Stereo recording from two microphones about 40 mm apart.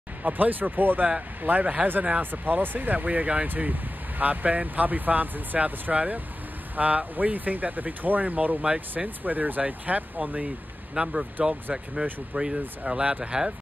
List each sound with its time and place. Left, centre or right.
0.2 s speech: right
2.4 s speech: right
3.4 s speech: right
11.0 s speech: right